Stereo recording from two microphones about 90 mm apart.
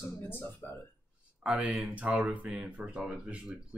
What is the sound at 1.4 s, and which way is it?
Speech, 10° right (ahead or behind).